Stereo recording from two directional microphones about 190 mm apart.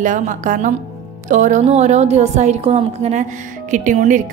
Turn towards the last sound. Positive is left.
turn(degrees=-40)  # may be behind; listen again after turning